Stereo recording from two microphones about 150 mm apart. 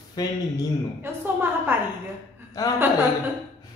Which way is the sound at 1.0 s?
15° right (ahead or behind).